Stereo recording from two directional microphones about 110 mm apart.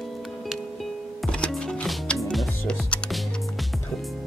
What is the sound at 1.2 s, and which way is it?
Music, 10° left (ahead or behind).